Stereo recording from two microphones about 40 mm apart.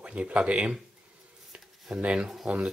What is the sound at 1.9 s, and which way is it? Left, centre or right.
Speech, right.